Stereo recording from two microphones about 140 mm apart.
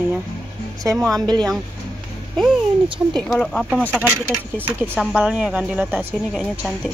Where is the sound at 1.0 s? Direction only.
25° right (ahead or behind).